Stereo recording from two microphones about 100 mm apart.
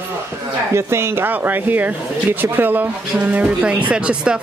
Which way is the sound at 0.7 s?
25° right (ahead or behind).